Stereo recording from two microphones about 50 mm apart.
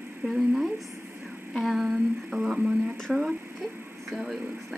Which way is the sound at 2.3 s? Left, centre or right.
Centre.